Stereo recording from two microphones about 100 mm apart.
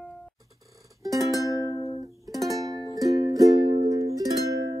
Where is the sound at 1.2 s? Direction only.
35° left (ahead or behind).